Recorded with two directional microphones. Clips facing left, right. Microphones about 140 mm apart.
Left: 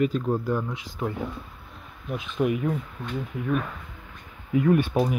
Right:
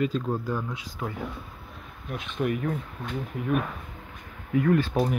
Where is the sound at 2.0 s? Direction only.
Centre (ahead or behind).